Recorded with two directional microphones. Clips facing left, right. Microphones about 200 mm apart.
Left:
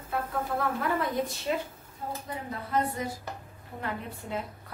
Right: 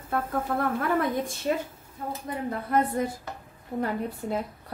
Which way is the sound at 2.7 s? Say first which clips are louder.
Right 4 dB; 55° right (ahead or behind).